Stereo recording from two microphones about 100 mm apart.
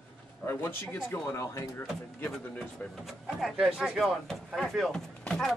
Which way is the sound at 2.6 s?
5° left (ahead or behind).